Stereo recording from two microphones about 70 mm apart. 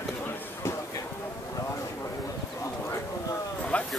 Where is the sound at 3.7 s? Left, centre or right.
Centre.